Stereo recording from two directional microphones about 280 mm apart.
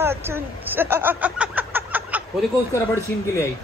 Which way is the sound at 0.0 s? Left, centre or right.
Centre.